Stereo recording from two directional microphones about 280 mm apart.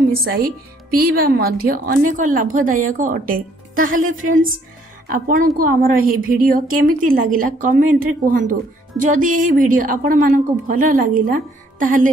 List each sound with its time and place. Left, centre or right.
0.1 s a woman's voice: right